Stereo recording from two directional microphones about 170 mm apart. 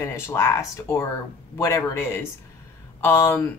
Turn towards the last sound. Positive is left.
turn(degrees=15)  # may be behind; listen again after turning